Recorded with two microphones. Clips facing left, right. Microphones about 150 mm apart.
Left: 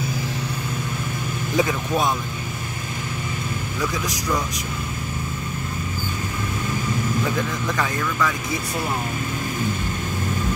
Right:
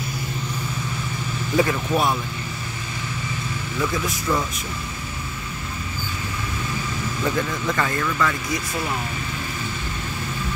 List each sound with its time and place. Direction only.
1.6 s speech: centre (ahead or behind)
7.3 s speech: centre (ahead or behind)